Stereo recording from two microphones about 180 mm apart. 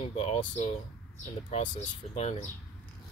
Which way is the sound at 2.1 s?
35° left (ahead or behind).